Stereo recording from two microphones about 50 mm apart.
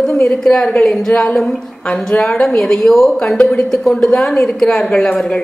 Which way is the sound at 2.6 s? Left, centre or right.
Centre.